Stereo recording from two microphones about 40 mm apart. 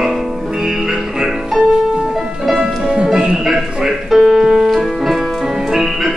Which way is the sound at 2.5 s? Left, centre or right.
Centre.